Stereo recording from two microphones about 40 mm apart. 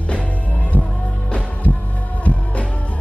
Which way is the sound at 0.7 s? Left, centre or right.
Left.